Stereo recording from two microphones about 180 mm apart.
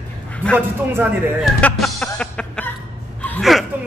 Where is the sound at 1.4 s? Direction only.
Centre (ahead or behind).